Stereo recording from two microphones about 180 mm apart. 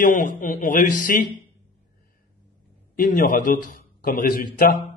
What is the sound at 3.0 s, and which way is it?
Speech, 50° left (ahead or behind).